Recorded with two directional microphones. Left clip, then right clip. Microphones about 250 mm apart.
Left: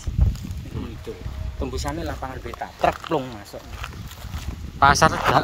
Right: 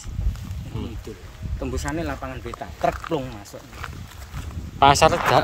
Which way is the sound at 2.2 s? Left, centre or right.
Centre.